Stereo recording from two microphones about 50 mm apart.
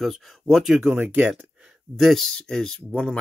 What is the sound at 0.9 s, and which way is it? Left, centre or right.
Speech, right.